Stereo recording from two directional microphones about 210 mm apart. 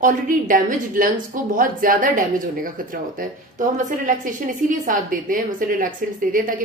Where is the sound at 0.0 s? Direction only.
40° right (ahead or behind).